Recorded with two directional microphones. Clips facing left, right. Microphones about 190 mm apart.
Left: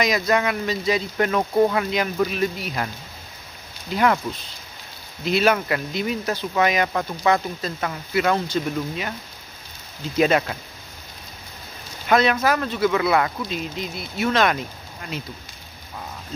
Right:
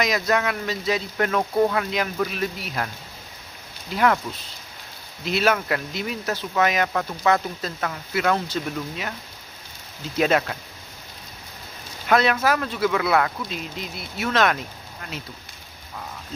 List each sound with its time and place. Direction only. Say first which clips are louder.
0.0 s speech: left 2 dB; centre (ahead or behind)
3.9 s speech: left 1 dB; centre (ahead or behind)
5.2 s speech: left 2 dB; centre (ahead or behind)
10.1 s speech: left 2 dB; centre (ahead or behind)
12.1 s speech: left 1 dB; centre (ahead or behind)